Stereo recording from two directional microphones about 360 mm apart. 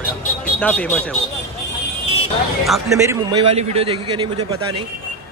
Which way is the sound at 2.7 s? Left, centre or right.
Centre.